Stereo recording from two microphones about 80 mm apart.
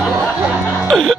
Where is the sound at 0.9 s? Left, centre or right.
Centre.